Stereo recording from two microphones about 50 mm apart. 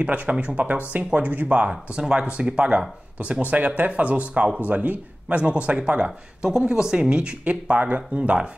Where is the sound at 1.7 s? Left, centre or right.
Centre.